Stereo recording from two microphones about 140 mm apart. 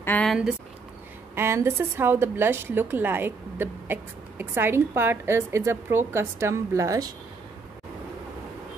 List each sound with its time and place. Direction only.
0.0 s speech: 15° left (ahead or behind)
0.3 s speech: 5° right (ahead or behind)
1.3 s a woman's voice: 20° right (ahead or behind)